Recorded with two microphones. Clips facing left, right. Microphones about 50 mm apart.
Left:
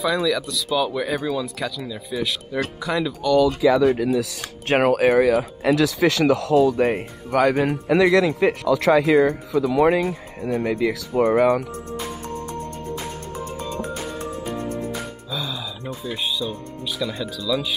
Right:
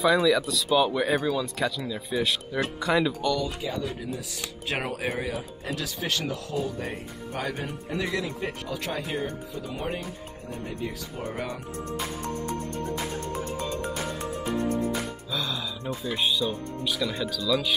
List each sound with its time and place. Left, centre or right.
0.0 s speech: centre
1.3 s speech: centre
3.3 s speech: left
4.4 s speech: left
15.3 s speech: centre